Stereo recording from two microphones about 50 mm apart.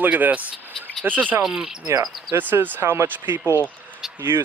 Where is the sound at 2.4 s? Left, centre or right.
Right.